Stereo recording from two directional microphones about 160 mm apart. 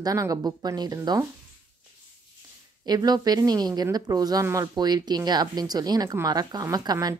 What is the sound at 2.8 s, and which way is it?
Speech, 25° right (ahead or behind).